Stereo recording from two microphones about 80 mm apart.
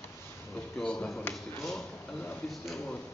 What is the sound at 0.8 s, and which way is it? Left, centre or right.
Speech, centre.